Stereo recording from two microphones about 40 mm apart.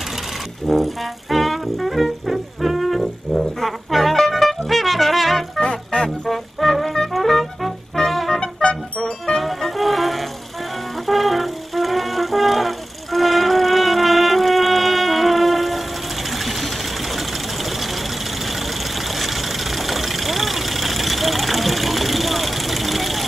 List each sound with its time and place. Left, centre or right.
0.7 s music: centre
3.6 s brass instrument: centre
5.6 s music: left
6.2 s music: centre
9.0 s music: centre
9.4 s music: centre
16.3 s engine: centre
17.6 s vehicle: centre